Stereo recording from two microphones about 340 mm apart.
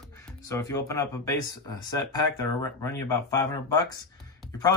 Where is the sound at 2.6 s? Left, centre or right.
Centre.